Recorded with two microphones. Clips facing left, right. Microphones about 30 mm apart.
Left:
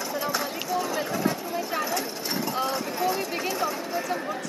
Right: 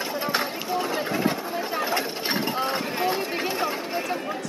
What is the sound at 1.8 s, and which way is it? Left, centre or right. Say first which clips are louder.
Mechanisms: right 4 dB; right.